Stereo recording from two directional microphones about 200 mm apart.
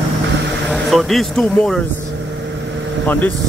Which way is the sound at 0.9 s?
Centre (ahead or behind).